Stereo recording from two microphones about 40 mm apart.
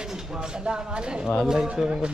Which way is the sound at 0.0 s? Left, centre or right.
Centre.